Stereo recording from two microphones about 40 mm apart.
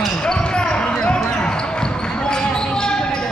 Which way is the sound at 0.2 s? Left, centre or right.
Left.